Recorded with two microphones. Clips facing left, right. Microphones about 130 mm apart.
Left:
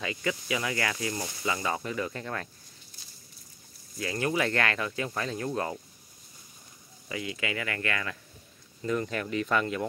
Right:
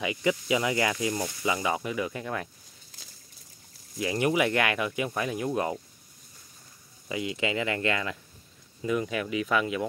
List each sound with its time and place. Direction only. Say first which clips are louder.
0.0 s speech: right 5 dB; 20° right (ahead or behind)
4.0 s speech: right 4 dB; 20° right (ahead or behind)
7.1 s speech: right 4 dB; 20° right (ahead or behind)
8.8 s speech: right 2 dB; 5° right (ahead or behind)